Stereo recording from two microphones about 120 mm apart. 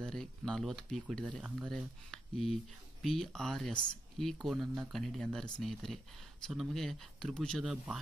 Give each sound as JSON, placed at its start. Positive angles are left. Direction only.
{"t": 0.0, "sound": "speech", "side_deg": 5}